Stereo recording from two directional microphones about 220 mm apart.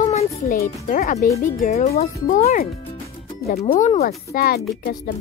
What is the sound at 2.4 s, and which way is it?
Speech, 40° left (ahead or behind).